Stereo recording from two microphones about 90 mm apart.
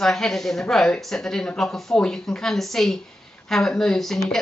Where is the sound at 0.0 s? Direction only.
5° left (ahead or behind).